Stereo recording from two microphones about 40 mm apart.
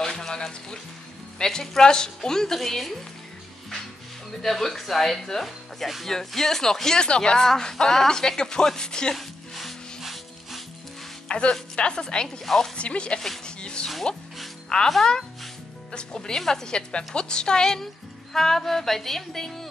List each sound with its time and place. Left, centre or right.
0.0 s music: centre
4.3 s music: centre
5.4 s speech: centre
6.0 s music: centre
9.1 s music: centre
11.2 s a woman's voice: left
12.4 s music: centre
12.7 s a woman's voice: left
13.6 s music: left
14.7 s a woman's voice: centre
15.9 s a woman's voice: left
18.3 s music: centre